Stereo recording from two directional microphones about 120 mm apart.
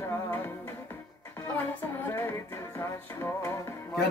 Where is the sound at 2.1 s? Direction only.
20° left (ahead or behind).